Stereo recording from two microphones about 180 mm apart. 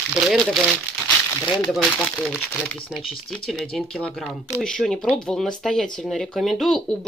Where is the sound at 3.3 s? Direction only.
Centre (ahead or behind).